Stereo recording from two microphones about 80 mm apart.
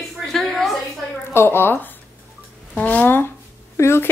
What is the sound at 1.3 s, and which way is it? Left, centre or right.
Speech, left.